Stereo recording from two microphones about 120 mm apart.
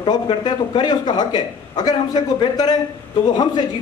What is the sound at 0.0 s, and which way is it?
A man's voice, 40° left (ahead or behind).